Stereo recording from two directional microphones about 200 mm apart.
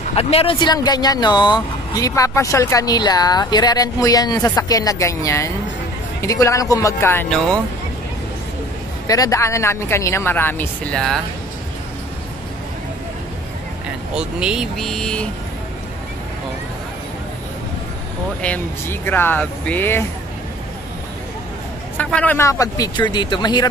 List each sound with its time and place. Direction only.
0.1 s a woman's voice: 30° left (ahead or behind); by 7.4 s 5° left (ahead or behind)
9.0 s a woman's voice: 15° left (ahead or behind)
14.1 s speech: 5° right (ahead or behind)
18.4 s a woman's voice: 10° left (ahead or behind)
21.9 s speech: 10° left (ahead or behind)